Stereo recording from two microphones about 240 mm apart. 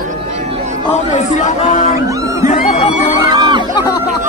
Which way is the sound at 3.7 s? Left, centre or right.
Centre.